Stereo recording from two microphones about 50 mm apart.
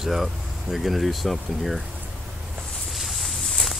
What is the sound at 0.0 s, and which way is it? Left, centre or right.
Speech, centre.